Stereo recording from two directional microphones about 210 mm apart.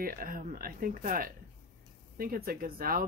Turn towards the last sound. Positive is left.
turn(degrees=-45)  # may be behind; listen again after turning